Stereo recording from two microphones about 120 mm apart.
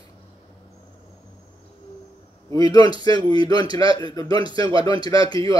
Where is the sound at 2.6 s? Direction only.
35° left (ahead or behind).